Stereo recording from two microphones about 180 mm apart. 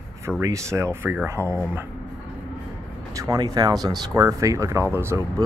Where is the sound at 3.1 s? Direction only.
20° right (ahead or behind).